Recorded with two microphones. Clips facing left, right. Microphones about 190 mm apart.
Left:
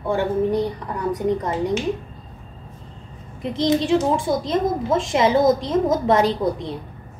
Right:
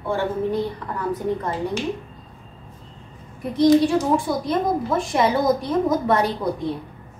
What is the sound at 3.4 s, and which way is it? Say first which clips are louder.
A woman's voice: right 5 dB; 25° left (ahead or behind).